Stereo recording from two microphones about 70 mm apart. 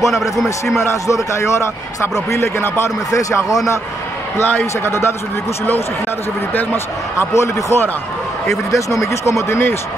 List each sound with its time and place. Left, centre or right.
0.0 s a man's voice: centre
1.0 s a man's voice: left
3.1 s speech: left
4.4 s a man's voice: left
6.5 s speech: left
7.3 s speech: left